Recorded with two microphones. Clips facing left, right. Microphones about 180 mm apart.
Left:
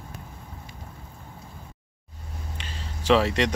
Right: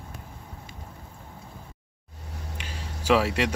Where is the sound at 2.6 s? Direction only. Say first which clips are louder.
Right 2 dB; 10° right (ahead or behind).